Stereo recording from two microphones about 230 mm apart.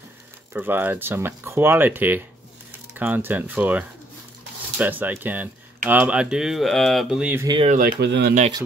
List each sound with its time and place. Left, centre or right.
0.5 s speech: centre
7.4 s speech: right
7.7 s speech: right